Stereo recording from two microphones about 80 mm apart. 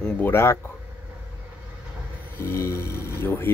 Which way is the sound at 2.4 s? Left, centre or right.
Left.